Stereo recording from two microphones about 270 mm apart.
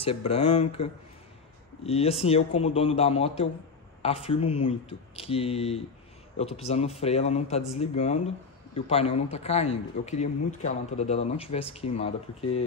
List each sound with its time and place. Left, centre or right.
0.0 s a man's voice: left